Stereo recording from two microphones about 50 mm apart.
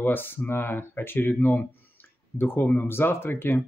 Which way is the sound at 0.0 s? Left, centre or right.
Left.